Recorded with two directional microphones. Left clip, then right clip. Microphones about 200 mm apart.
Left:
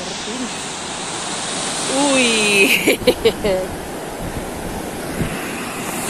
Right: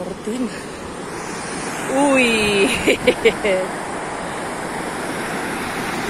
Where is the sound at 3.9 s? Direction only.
25° left (ahead or behind).